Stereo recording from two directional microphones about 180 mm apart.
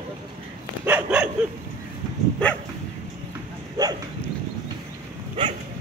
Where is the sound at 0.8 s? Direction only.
5° right (ahead or behind).